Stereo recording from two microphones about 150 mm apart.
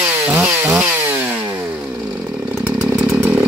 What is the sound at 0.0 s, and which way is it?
Chainsaw, 10° right (ahead or behind).